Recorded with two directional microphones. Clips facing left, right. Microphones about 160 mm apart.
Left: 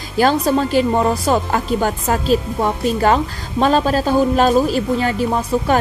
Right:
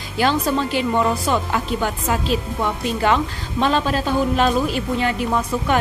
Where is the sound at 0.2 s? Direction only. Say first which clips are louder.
Left 4 dB; 40° left (ahead or behind).